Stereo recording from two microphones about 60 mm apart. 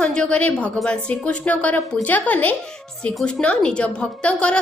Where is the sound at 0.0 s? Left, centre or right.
Centre.